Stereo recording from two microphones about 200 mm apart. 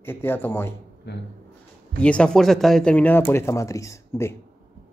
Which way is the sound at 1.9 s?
5° left (ahead or behind).